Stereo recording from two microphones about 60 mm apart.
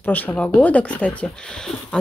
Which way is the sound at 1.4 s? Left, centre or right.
Centre.